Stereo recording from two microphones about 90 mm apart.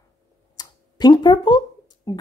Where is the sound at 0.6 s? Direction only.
50° left (ahead or behind).